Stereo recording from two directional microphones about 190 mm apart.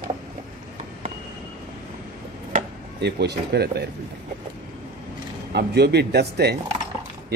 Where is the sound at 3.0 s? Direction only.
60° right (ahead or behind).